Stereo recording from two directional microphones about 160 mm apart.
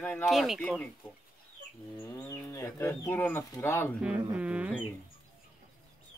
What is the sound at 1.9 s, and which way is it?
Speech, 20° left (ahead or behind).